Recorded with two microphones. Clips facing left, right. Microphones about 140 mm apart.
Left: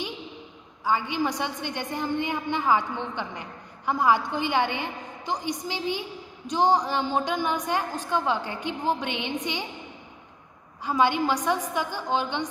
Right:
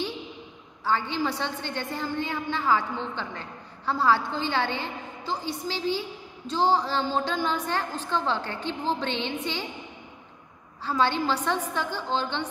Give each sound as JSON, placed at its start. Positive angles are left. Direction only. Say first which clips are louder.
{"t": 0.8, "sound": "a woman's voice", "louder": "left 1 dB", "side_deg": 15}
{"t": 10.8, "sound": "a woman's voice", "louder": "left 2 dB", "side_deg": 15}